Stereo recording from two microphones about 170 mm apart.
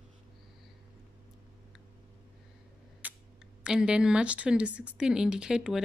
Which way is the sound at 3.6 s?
5° right (ahead or behind).